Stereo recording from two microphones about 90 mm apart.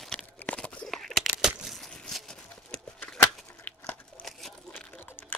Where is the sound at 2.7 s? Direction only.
10° left (ahead or behind).